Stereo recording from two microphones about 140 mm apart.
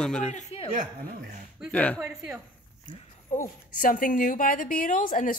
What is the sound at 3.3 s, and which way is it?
A woman's voice, 70° left (ahead or behind).